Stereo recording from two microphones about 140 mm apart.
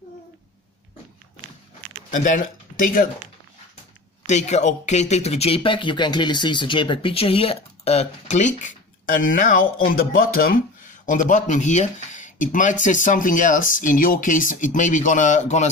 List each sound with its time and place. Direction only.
2.0 s speech: 65° left (ahead or behind)
4.3 s speech: 55° left (ahead or behind)